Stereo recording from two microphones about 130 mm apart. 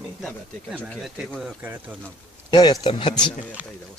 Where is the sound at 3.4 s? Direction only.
10° right (ahead or behind).